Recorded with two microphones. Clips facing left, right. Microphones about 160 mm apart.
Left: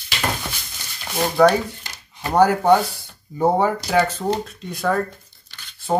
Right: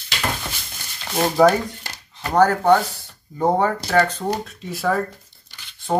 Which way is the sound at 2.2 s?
10° left (ahead or behind).